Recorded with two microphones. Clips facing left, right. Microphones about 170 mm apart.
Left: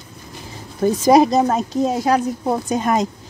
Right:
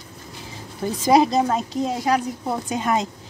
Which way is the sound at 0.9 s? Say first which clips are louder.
Left 4 dB; 45° left (ahead or behind).